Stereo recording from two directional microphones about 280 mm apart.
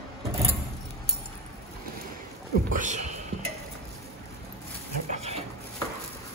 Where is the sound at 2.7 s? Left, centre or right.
Right.